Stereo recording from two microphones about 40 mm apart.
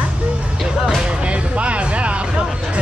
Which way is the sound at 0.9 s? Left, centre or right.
Right.